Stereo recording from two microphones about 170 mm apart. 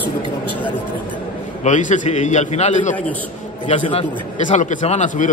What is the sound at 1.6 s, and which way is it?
A man's voice, 45° left (ahead or behind).